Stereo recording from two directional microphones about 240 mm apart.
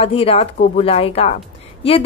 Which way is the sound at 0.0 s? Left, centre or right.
Left.